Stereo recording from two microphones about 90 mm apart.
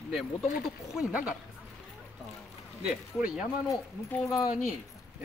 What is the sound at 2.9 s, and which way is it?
Speech, 10° right (ahead or behind).